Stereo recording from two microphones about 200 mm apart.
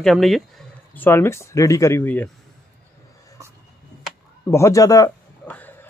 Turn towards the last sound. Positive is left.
turn(degrees=10)  # may be behind; listen again after turning